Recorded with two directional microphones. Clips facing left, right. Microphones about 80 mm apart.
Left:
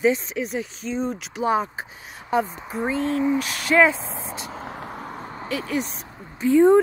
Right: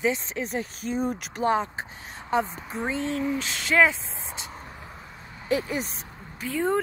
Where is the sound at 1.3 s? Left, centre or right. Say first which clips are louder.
Left 2 dB; centre.